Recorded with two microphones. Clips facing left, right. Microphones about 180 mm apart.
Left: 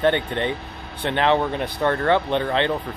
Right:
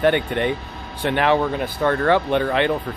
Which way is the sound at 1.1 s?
20° left (ahead or behind).